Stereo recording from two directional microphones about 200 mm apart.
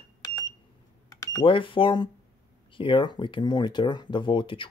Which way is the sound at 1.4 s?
25° left (ahead or behind).